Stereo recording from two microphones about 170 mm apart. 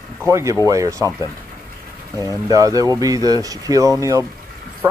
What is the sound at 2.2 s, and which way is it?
Speech, 20° left (ahead or behind).